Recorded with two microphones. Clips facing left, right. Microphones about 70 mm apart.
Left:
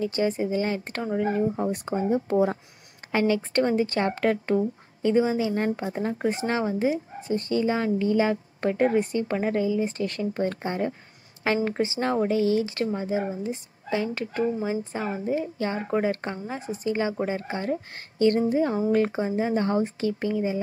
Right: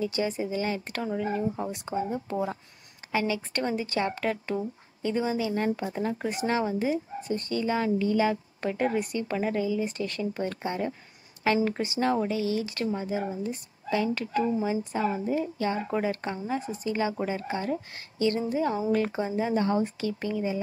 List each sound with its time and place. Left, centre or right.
0.0 s a woman's voice: left
4.6 s a woman's voice: left
13.3 s a woman's voice: left
13.8 s a woman's voice: left
16.4 s a woman's voice: left
16.9 s a woman's voice: left